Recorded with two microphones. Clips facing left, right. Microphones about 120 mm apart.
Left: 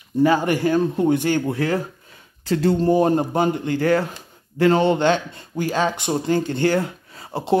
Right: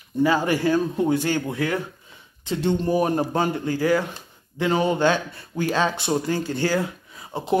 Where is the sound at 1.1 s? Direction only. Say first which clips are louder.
Left 3 dB; 45° left (ahead or behind).